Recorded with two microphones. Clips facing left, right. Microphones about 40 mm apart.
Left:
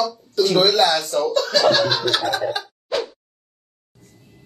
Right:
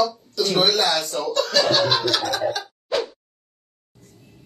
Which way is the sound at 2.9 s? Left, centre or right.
Centre.